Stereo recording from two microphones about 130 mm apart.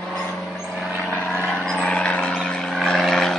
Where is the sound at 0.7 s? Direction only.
10° right (ahead or behind).